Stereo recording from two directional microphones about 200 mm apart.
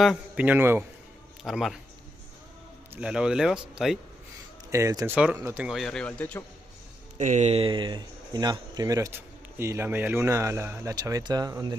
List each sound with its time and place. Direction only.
0.0 s a man's voice: 5° right (ahead or behind)
2.9 s a man's voice: 5° right (ahead or behind)
4.6 s speech: 15° right (ahead or behind); by 6.4 s 5° left (ahead or behind)
7.2 s speech: 35° right (ahead or behind); by 11.7 s 20° right (ahead or behind)